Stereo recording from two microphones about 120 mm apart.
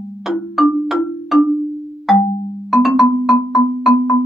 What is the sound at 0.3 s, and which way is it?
Music, 5° right (ahead or behind).